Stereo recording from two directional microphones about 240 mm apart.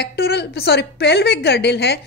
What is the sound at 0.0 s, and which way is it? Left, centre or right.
A woman's voice, left.